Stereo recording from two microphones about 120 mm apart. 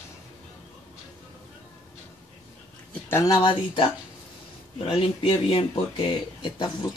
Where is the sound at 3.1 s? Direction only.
30° left (ahead or behind).